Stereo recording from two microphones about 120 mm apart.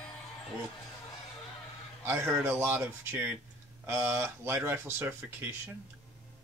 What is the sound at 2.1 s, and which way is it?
Speech, 20° right (ahead or behind).